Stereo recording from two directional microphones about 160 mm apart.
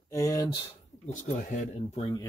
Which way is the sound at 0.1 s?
20° left (ahead or behind).